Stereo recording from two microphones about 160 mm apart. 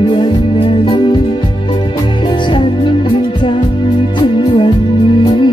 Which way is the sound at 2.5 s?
30° left (ahead or behind).